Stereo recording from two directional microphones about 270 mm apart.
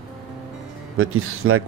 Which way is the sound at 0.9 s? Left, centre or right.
Right.